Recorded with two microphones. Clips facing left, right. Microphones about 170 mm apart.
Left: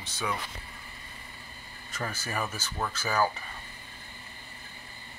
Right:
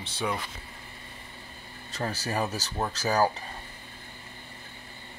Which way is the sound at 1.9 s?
35° right (ahead or behind).